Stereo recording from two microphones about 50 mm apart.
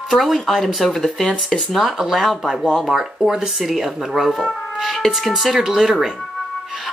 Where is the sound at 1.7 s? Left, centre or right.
Centre.